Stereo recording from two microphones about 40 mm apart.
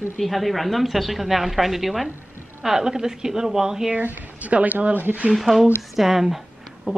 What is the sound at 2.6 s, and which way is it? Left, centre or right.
A woman's voice, centre.